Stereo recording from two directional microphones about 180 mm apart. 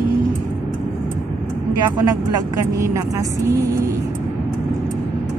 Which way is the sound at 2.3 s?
20° right (ahead or behind).